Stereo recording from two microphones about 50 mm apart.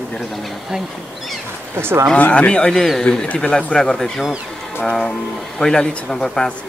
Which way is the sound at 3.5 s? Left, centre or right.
Centre.